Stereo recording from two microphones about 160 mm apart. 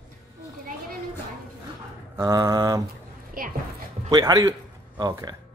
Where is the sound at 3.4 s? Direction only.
65° right (ahead or behind).